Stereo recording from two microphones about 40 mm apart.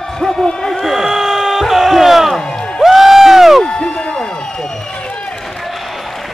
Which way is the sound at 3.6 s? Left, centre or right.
Centre.